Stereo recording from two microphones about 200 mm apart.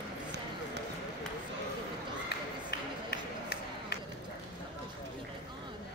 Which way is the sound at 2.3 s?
55° left (ahead or behind).